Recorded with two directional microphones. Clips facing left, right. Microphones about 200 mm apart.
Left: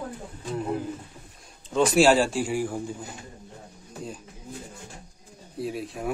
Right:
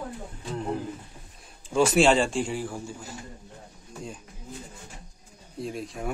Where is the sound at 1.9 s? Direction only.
5° left (ahead or behind).